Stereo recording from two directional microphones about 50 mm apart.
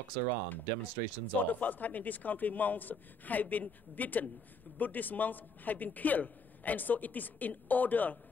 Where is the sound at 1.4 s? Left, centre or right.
Left.